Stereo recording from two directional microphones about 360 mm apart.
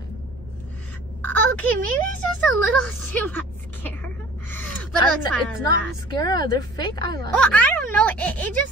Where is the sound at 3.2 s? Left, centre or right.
Centre.